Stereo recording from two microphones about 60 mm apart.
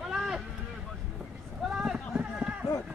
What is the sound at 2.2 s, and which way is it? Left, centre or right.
Run, centre.